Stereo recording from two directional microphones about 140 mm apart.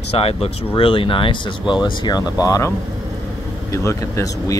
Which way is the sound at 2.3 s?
25° left (ahead or behind).